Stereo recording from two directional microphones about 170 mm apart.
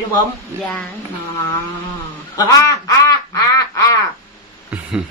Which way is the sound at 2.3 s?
20° left (ahead or behind).